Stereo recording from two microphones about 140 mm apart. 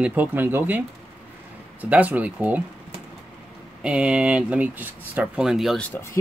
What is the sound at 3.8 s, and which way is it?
Speech, 5° right (ahead or behind).